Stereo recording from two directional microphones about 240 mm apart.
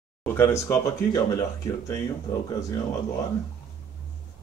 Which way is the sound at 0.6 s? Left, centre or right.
Centre.